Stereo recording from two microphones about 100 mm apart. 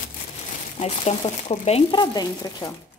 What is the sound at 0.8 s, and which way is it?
Speech, 90° left.